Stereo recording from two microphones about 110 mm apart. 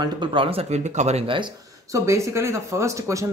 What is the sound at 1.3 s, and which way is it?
Speech, 45° right (ahead or behind).